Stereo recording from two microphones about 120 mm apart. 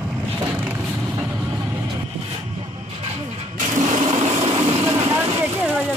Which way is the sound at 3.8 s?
80° right.